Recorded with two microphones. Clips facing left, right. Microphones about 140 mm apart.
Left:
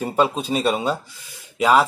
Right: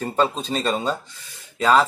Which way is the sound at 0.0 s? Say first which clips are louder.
Left 2 dB; 10° left (ahead or behind).